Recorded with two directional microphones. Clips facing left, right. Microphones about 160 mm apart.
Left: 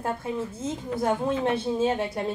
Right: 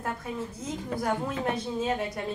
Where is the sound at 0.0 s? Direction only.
25° left (ahead or behind).